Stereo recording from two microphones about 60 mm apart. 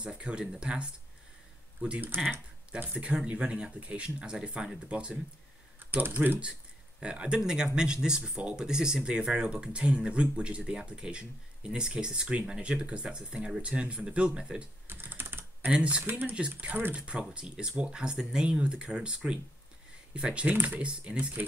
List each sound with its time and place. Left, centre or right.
0.0 s speech: centre
5.8 s speech: right
7.0 s speech: centre
14.9 s typing: right
15.7 s speech: centre
16.1 s speech: right
16.3 s speech: centre